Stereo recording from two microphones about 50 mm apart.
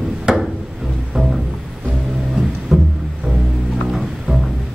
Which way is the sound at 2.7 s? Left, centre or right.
Centre.